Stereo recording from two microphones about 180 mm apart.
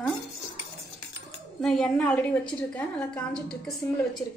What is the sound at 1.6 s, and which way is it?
A woman's voice, 5° left (ahead or behind).